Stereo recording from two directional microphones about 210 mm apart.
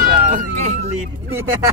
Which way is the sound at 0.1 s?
40° right (ahead or behind).